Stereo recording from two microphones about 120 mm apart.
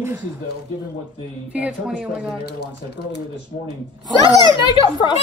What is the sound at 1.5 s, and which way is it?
Speech, 10° right (ahead or behind).